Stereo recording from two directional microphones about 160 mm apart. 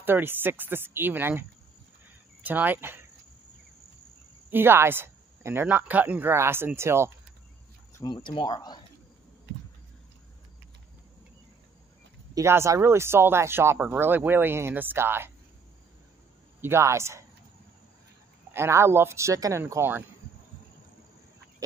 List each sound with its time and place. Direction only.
0.0 s speech: 15° right (ahead or behind)
2.4 s speech: 10° right (ahead or behind)
4.5 s speech: 15° right (ahead or behind)
8.0 s speech: 30° left (ahead or behind)
12.4 s speech: 15° right (ahead or behind)
16.6 s speech: 15° right (ahead or behind)
18.5 s speech: 15° right (ahead or behind)